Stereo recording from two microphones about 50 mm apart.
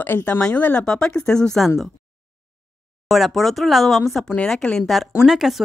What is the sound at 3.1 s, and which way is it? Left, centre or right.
A woman's voice, centre.